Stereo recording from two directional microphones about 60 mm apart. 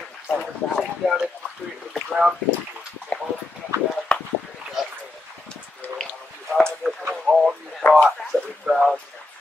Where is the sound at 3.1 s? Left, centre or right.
Centre.